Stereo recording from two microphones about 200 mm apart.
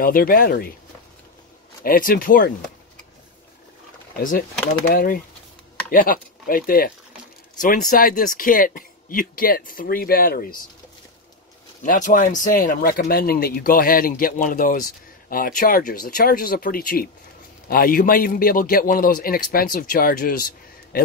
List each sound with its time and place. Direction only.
0.0 s speech: 45° left (ahead or behind)
1.8 s speech: 45° left (ahead or behind)
4.2 s speech: 45° left (ahead or behind)
11.8 s a man's voice: 40° left (ahead or behind)